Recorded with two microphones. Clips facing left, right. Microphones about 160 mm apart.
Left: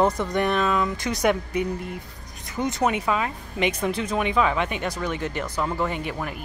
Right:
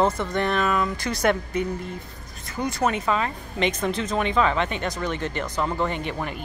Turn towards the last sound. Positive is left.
turn(degrees=0)  # may be behind; listen again after turning